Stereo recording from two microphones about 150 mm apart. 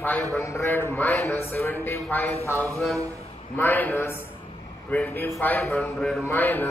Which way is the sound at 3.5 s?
10° left (ahead or behind).